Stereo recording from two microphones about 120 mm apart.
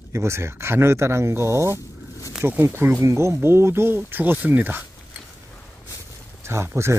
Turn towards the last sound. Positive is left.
turn(degrees=-20)  # may be behind; listen again after turning